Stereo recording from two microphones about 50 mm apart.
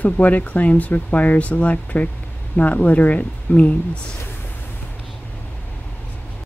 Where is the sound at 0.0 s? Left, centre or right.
Left.